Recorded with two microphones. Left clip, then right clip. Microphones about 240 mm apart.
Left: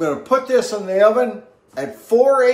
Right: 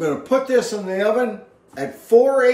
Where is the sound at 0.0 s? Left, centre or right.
Centre.